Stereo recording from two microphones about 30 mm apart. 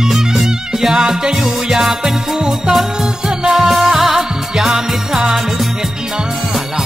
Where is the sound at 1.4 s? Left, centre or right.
Centre.